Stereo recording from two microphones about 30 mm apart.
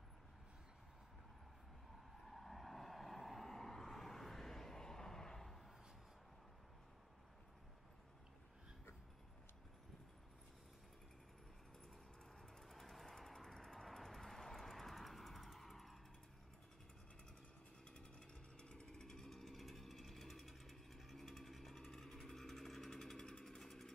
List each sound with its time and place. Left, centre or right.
2.2 s vehicle: centre
12.6 s vehicle: centre
17.8 s a sound: left
18.9 s vehicle: centre
19.3 s vehicle: centre
22.8 s engine: centre
23.6 s vehicle: centre